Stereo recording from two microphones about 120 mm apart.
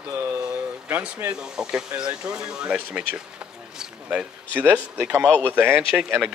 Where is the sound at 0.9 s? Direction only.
15° right (ahead or behind).